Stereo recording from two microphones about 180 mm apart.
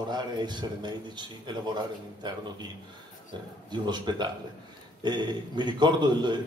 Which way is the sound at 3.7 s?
25° right (ahead or behind).